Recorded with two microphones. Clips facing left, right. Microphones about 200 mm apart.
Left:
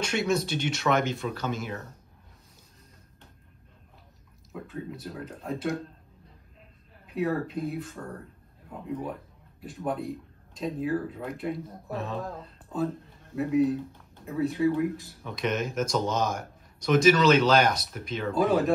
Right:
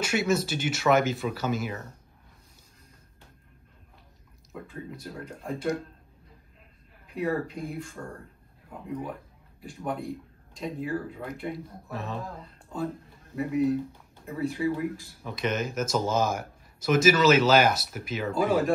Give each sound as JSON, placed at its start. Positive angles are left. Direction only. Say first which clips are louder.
{"t": 0.0, "sound": "speech", "louder": "right 1 dB", "side_deg": -5}
{"t": 4.5, "sound": "speech", "louder": "left 2 dB", "side_deg": 5}
{"t": 7.2, "sound": "speech", "louder": "left 1 dB", "side_deg": 0}
{"t": 9.6, "sound": "speech", "louder": "left 2 dB", "side_deg": 0}